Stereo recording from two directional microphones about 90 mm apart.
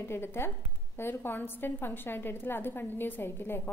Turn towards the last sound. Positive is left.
turn(degrees=25)  # may be behind; listen again after turning